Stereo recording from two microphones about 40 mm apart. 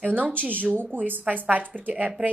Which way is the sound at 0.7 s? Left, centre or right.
Right.